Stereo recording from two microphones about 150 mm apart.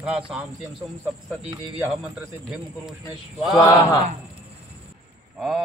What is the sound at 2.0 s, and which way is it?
Speech, 5° right (ahead or behind).